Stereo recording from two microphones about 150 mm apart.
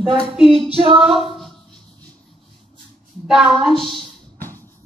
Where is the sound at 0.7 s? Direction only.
40° right (ahead or behind).